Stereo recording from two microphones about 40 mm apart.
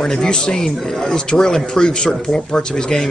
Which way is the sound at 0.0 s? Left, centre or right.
Centre.